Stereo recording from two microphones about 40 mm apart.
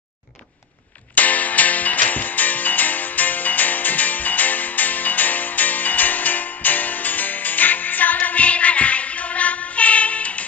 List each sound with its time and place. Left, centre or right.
1.1 s music: left